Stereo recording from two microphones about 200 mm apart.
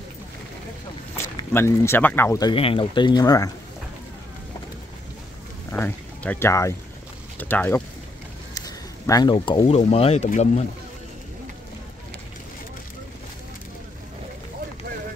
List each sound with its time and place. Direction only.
1.1 s speech: 10° left (ahead or behind)
5.7 s speech: 10° left (ahead or behind); by 10.6 s 35° left (ahead or behind)